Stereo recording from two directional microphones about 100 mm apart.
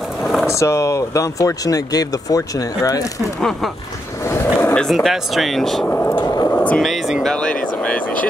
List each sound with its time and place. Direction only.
0.2 s vehicle: centre (ahead or behind)
0.5 s speech: 30° left (ahead or behind)
3.3 s speech: 5° left (ahead or behind)
4.2 s a sound: 25° left (ahead or behind)
4.7 s speech: centre (ahead or behind)
5.9 s speech: 15° left (ahead or behind)
6.1 s a sound: 40° left (ahead or behind)
6.5 s a sound: 15° left (ahead or behind)
6.8 s speech: centre (ahead or behind)
7.3 s vehicle: 10° left (ahead or behind)